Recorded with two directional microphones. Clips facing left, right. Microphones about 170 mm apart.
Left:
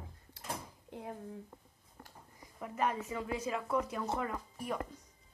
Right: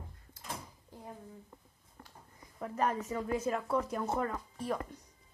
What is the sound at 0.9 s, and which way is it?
Speech, 60° left (ahead or behind).